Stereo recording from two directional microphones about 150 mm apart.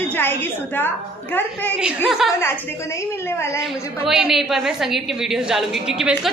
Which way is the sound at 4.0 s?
Centre (ahead or behind).